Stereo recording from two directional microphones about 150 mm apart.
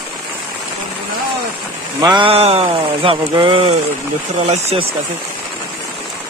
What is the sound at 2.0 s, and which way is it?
Speech, 30° right (ahead or behind).